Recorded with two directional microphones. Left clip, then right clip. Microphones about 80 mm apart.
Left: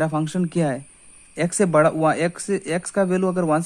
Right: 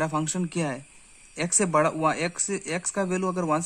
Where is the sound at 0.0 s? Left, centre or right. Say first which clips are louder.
Left 4 dB; left.